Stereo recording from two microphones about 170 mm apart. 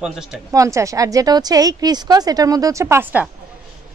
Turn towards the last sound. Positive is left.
turn(degrees=-15)  # may be behind; listen again after turning